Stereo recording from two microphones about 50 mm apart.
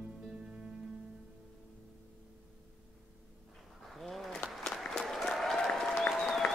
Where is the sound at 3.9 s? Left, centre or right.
Centre.